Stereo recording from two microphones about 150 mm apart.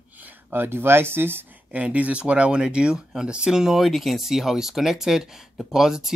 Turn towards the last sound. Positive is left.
turn(degrees=-5)  # may be behind; listen again after turning